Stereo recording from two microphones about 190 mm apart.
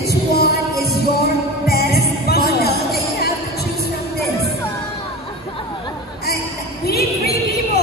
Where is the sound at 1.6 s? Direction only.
55° left (ahead or behind).